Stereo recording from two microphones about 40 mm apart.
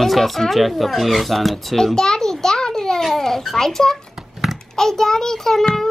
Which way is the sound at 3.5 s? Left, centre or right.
Centre.